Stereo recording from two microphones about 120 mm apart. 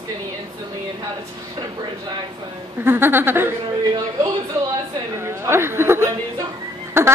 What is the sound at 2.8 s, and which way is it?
Speech, 20° right (ahead or behind).